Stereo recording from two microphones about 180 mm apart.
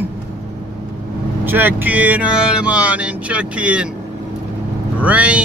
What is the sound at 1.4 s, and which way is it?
Speech, 10° right (ahead or behind).